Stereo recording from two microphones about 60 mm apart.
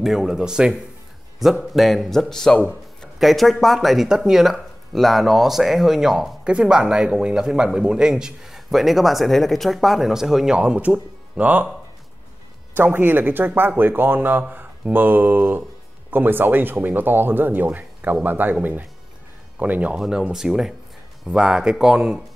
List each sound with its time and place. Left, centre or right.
0.0 s speech: centre
1.4 s speech: centre
3.2 s speech: centre
6.4 s speech: centre
10.8 s speech: right
12.7 s speech: right
20.1 s speech: centre